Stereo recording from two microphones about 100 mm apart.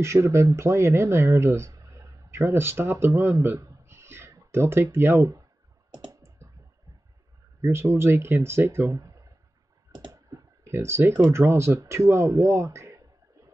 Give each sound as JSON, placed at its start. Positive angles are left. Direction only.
{"t": 0.0, "sound": "speech", "side_deg": -30}
{"t": 6.1, "sound": "clicking", "side_deg": -30}
{"t": 7.6, "sound": "speech", "side_deg": -25}
{"t": 9.9, "sound": "computer keyboard", "side_deg": -40}
{"t": 11.2, "sound": "speech", "side_deg": -25}